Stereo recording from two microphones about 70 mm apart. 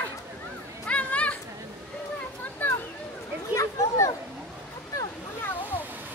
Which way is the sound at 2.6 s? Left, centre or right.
Left.